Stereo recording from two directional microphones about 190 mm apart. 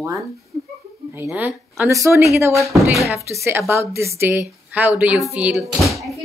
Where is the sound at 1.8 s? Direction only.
15° right (ahead or behind).